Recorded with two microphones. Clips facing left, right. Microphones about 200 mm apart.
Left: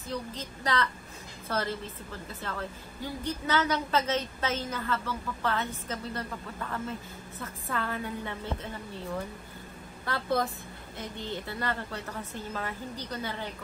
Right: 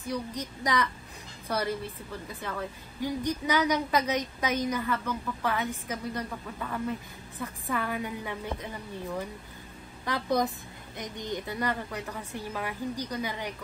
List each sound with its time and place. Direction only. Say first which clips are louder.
0.0 s a woman's voice: right 3 dB; 15° right (ahead or behind)
10.0 s a woman's voice: right 2 dB; 15° right (ahead or behind)